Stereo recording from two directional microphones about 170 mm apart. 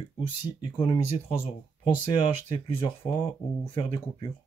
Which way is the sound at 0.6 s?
30° left (ahead or behind).